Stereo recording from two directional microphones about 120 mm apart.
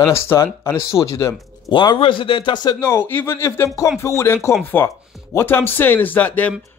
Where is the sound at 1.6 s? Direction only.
40° left (ahead or behind).